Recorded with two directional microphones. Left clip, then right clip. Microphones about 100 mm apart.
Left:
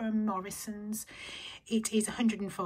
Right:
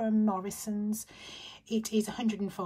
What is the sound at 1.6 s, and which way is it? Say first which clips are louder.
Speech: even; 45° right (ahead or behind).